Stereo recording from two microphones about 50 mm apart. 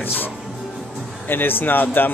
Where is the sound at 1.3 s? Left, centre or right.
Left.